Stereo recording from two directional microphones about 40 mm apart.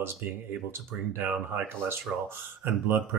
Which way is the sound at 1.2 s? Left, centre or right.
Right.